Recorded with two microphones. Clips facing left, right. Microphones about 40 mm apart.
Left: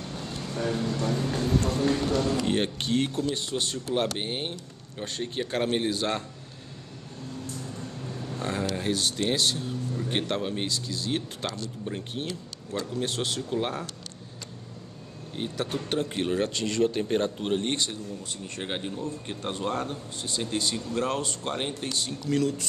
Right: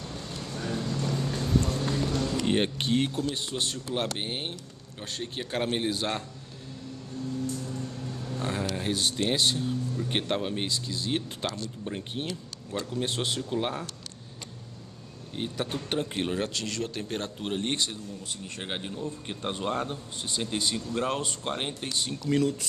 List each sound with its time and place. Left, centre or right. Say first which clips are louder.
0.5 s speech: left 4 dB; left
2.4 s speech: even; centre
8.4 s a man's voice: left 1 dB; centre
15.3 s a man's voice: left 1 dB; centre